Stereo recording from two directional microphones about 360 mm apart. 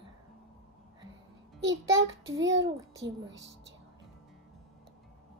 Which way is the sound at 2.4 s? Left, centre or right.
Right.